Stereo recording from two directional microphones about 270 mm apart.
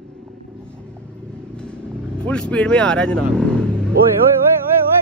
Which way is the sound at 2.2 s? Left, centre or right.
Centre.